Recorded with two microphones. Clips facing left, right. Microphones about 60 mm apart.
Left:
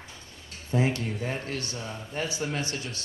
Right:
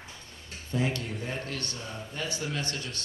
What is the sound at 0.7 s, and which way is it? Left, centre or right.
Speech, left.